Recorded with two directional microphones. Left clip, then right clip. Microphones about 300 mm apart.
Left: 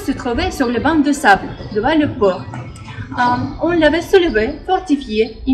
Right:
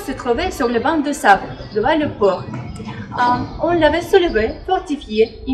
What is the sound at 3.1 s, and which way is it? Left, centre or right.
A woman's voice, centre.